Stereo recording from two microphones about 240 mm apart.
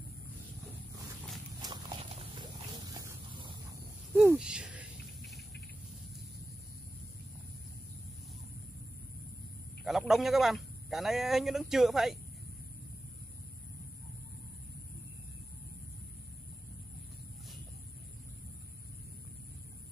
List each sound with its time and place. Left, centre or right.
1.6 s horse: centre
4.1 s rattle: centre
9.8 s a man's voice: centre